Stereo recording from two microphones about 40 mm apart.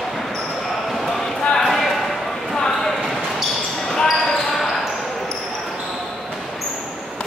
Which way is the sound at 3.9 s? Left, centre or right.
Centre.